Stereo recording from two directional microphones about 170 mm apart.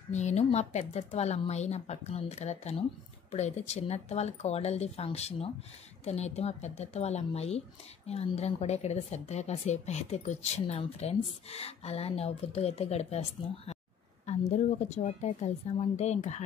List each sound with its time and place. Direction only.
0.1 s a woman's voice: 40° left (ahead or behind)
14.5 s a woman's voice: 40° left (ahead or behind)